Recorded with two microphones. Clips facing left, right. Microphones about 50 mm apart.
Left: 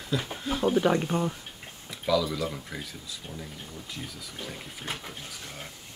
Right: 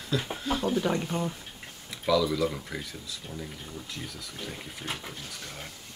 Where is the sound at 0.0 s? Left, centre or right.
Centre.